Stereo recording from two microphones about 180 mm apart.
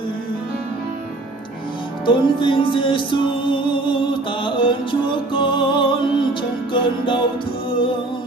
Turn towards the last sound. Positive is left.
turn(degrees=30)  # may be behind; listen again after turning